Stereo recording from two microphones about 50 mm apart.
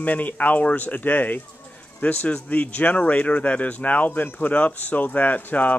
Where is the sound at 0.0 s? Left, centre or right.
Left.